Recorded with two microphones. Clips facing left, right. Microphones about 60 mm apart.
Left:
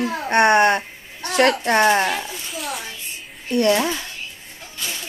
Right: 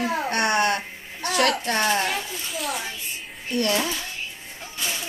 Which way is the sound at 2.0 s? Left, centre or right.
Centre.